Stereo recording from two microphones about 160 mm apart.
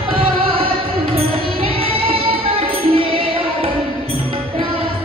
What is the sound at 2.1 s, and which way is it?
Music, 35° right (ahead or behind).